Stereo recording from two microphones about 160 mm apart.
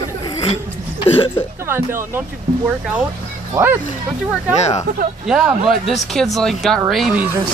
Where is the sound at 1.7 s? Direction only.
15° right (ahead or behind).